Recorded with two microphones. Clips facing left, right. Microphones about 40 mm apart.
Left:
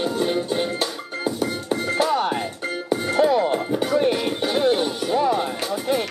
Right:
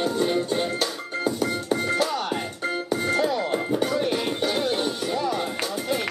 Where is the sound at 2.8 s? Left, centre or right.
Centre.